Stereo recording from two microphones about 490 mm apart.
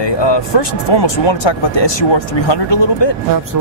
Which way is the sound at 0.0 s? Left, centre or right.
Left.